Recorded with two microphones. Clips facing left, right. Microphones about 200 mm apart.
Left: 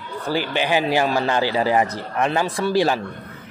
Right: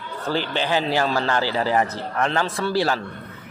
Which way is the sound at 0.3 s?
10° left (ahead or behind).